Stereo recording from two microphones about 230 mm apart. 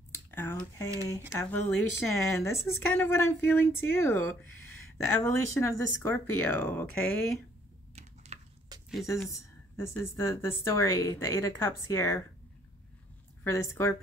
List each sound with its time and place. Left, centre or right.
0.1 s a sound: centre
1.3 s speech: centre
7.9 s typing: right
8.7 s a sound: centre
9.3 s speech: centre
13.4 s speech: centre